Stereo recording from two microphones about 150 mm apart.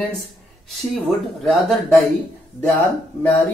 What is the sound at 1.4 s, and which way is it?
Speech, centre (ahead or behind).